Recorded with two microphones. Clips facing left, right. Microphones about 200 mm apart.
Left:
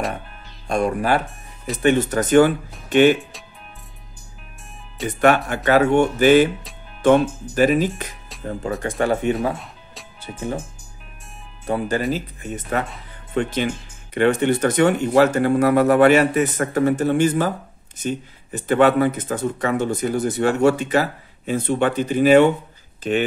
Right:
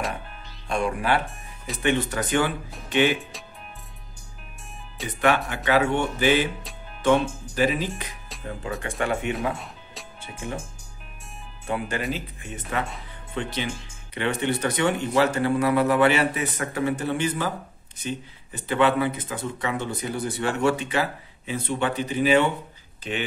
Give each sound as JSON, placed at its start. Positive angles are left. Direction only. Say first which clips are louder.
{"t": 0.7, "sound": "speech", "louder": "left 5 dB", "side_deg": 40}
{"t": 5.0, "sound": "speech", "louder": "left 8 dB", "side_deg": 0}
{"t": 5.7, "sound": "speech", "louder": "left 6 dB", "side_deg": 45}
{"t": 11.6, "sound": "speech", "louder": "left 6 dB", "side_deg": 35}